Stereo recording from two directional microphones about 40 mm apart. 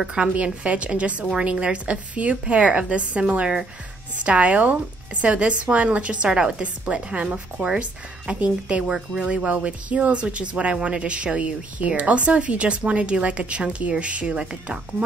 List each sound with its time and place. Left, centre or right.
0.0 s a woman's voice: centre
0.3 s a woman's voice: right
3.3 s speech: right
4.2 s a woman's voice: right
7.5 s speech: centre
8.3 s a woman's voice: right